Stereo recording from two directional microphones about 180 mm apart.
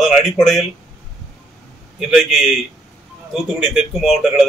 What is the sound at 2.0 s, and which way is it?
Speech, centre (ahead or behind).